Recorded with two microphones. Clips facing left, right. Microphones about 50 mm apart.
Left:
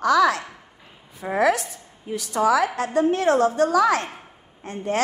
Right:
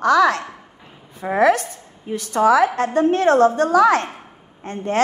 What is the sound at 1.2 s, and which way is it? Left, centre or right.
A woman's voice, right.